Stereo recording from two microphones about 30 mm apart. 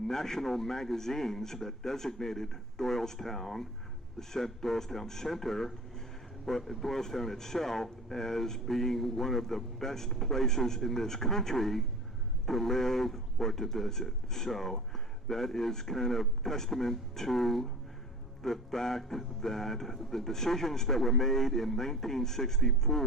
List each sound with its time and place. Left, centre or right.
0.1 s speech: centre